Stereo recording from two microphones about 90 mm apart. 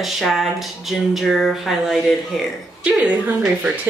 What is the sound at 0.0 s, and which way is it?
Speech, centre (ahead or behind).